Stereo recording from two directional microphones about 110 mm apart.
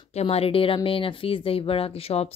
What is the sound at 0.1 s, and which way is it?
Speech, 70° left (ahead or behind).